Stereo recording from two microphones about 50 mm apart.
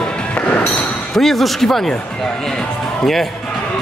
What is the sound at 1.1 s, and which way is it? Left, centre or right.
Speech, centre.